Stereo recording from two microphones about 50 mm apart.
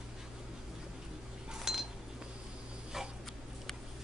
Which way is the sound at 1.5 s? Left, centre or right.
Centre.